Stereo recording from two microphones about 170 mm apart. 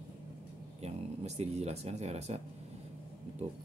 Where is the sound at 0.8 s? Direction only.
40° right (ahead or behind).